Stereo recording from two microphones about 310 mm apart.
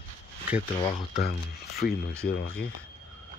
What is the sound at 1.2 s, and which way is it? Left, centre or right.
Speech, left.